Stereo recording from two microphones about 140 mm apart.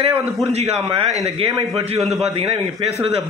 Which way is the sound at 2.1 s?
50° right (ahead or behind).